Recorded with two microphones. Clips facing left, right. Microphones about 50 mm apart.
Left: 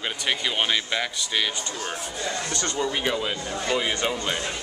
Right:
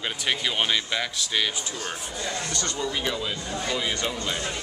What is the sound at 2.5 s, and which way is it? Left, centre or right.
Speech, left.